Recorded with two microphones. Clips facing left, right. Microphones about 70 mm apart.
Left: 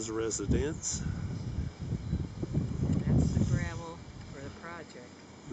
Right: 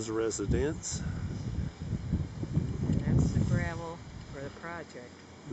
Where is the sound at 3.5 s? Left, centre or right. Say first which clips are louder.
Right 2 dB; right.